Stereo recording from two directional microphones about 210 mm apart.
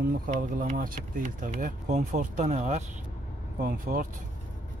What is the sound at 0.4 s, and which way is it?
Speech, 40° right (ahead or behind).